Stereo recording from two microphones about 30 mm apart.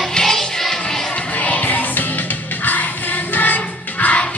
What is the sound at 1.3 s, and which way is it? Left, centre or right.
Music, left.